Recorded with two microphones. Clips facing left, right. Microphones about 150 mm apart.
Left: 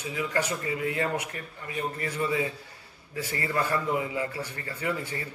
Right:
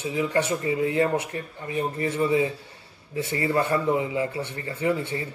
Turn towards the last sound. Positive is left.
turn(degrees=-25)  # may be behind; listen again after turning